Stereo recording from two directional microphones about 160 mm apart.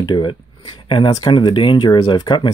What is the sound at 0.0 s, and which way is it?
Speech, 30° left (ahead or behind).